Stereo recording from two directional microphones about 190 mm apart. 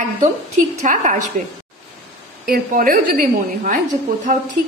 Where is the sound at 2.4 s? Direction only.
50° right (ahead or behind).